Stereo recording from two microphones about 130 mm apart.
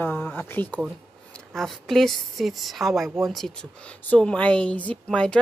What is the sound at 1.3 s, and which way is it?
A woman's voice, centre (ahead or behind).